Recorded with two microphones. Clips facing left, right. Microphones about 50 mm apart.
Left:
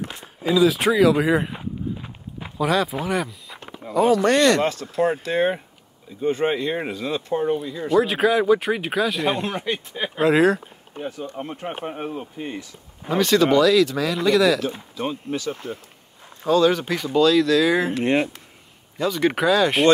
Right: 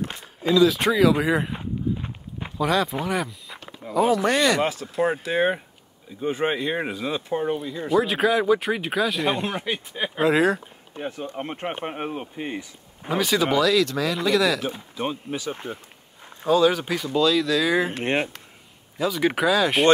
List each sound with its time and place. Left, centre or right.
0.2 s a sound: centre
2.5 s speech: centre
11.0 s speech: right
13.0 s speech: centre
15.0 s speech: centre
16.4 s speech: centre
17.9 s speech: right
18.9 s speech: centre